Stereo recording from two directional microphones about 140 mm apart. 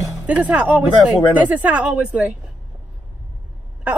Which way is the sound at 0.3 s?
10° right (ahead or behind).